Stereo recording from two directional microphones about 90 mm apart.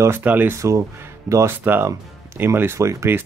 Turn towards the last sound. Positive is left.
turn(degrees=-30)  # may be behind; listen again after turning